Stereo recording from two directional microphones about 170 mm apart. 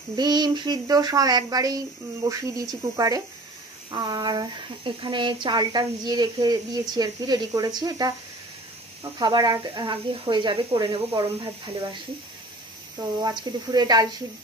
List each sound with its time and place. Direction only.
0.1 s speech: 25° right (ahead or behind)
9.2 s speech: 25° right (ahead or behind)
12.9 s speech: 25° right (ahead or behind)